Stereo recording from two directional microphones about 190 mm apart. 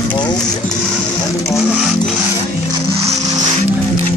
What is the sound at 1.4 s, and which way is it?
Music, centre (ahead or behind).